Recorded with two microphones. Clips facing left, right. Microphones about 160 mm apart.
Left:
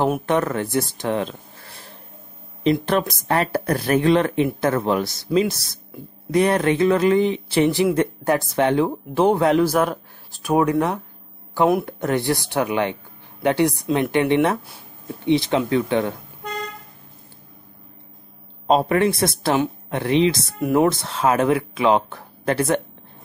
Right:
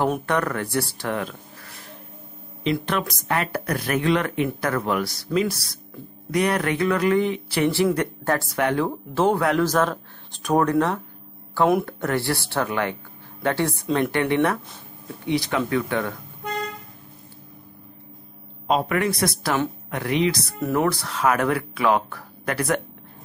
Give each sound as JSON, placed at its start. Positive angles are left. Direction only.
{"t": 0.3, "sound": "speech", "side_deg": 20}
{"t": 9.7, "sound": "speech", "side_deg": 10}
{"t": 18.7, "sound": "speech", "side_deg": 30}
{"t": 20.5, "sound": "speech", "side_deg": 15}
{"t": 20.8, "sound": "speech", "side_deg": 25}